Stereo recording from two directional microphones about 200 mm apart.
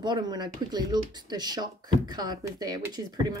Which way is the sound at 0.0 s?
20° right (ahead or behind).